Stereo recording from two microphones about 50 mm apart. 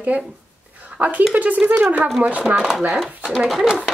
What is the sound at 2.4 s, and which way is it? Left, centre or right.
Speech, centre.